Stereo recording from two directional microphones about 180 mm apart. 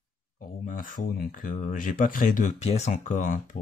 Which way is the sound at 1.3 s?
45° left (ahead or behind).